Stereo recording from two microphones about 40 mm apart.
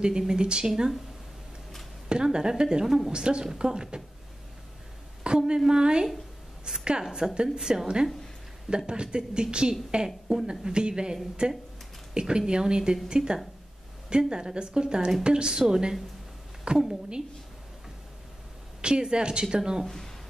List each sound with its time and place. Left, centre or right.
0.3 s a woman's voice: right
2.0 s a woman's voice: right
5.2 s a sound: right
5.7 s a woman's voice: right
16.7 s a woman's voice: right
18.8 s a woman's voice: right